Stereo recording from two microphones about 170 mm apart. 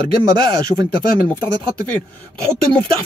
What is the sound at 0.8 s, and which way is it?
Speech, 10° left (ahead or behind).